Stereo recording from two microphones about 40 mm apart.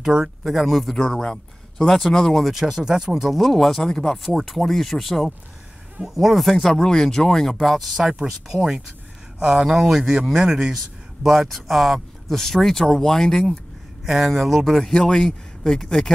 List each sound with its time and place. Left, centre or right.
0.0 s speech: centre
0.9 s speech: centre
2.4 s speech: centre
3.3 s speech: centre
7.6 s speech: centre
9.4 s speech: right
9.7 s speech: centre
10.7 s speech: centre
14.0 s speech: centre